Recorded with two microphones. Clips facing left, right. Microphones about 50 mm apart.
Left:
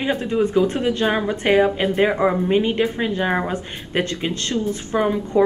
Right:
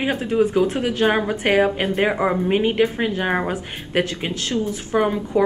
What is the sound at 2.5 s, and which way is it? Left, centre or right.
Speech, centre.